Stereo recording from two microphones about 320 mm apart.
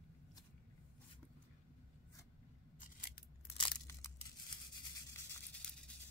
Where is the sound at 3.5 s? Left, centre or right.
Centre.